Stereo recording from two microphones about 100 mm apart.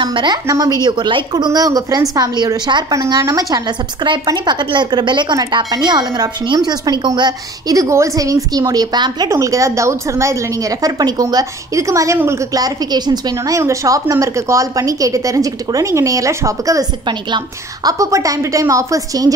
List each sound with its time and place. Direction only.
0.0 s a woman's voice: 50° right (ahead or behind)
0.5 s speech: 30° right (ahead or behind)
0.8 s a woman's voice: 50° right (ahead or behind)
9.3 s speech: 30° right (ahead or behind)
13.6 s speech: 30° right (ahead or behind)
17.8 s speech: 35° right (ahead or behind)